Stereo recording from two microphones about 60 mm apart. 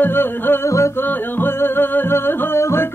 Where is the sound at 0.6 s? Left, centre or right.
Left.